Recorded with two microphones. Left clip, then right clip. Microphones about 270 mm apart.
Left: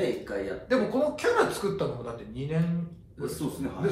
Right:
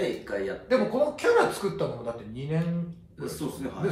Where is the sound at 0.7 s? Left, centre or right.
Right.